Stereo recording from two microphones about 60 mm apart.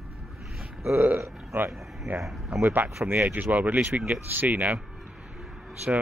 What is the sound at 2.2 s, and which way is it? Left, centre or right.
Speech, centre.